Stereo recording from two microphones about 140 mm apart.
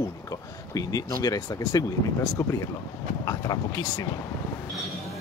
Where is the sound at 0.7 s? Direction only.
25° left (ahead or behind).